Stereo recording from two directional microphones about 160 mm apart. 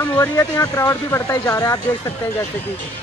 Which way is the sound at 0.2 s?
20° left (ahead or behind).